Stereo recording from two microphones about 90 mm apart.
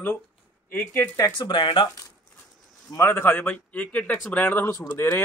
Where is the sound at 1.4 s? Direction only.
65° left (ahead or behind).